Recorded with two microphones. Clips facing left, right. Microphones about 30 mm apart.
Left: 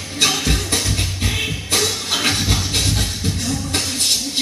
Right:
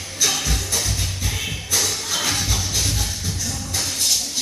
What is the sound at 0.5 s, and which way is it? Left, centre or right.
Music, left.